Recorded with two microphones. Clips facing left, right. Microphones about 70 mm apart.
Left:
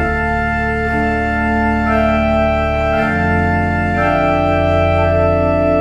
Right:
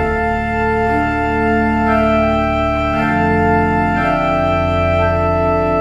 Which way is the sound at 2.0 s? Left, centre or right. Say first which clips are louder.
Even; centre.